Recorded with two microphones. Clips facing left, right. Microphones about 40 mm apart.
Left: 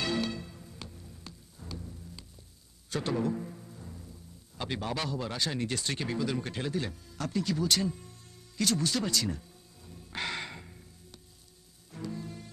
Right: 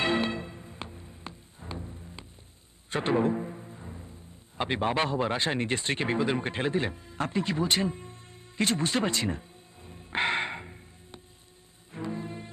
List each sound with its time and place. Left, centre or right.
0.0 s music: right